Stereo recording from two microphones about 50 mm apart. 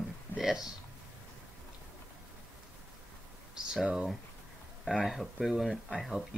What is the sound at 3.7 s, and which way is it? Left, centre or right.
Speech, centre.